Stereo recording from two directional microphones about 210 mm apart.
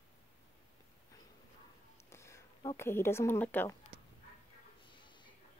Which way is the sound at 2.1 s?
15° left (ahead or behind).